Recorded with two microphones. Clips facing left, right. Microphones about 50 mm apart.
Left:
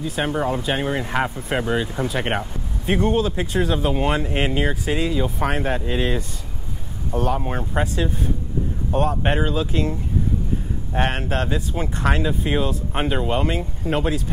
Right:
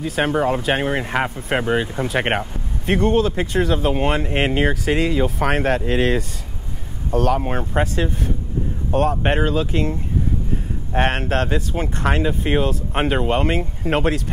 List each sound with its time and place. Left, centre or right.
0.0 s speech: right
1.0 s speech: right
2.8 s speech: right
7.4 s speech: right
9.1 s speech: right
11.0 s speech: right